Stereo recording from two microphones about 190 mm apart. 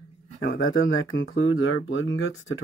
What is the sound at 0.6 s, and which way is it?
Speech, 90° left.